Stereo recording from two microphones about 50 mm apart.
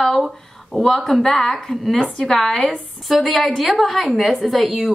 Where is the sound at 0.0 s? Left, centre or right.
Centre.